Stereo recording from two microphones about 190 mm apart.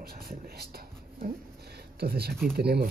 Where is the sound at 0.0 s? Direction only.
50° right (ahead or behind).